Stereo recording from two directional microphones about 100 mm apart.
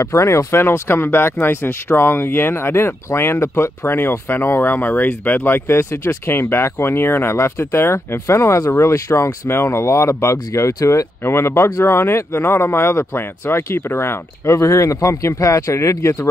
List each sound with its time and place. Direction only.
0.0 s speech: 30° left (ahead or behind)